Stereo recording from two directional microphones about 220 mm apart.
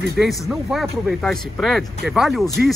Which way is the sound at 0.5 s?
Centre (ahead or behind).